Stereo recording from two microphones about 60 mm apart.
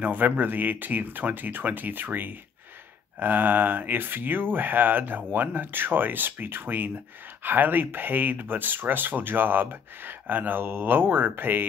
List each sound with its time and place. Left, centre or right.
0.0 s speech: right